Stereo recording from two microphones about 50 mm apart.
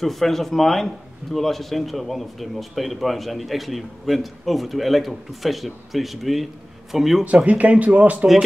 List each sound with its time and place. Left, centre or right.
0.0 s speech: centre
7.4 s speech: right